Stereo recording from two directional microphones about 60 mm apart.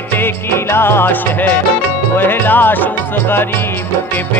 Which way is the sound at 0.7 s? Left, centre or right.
Left.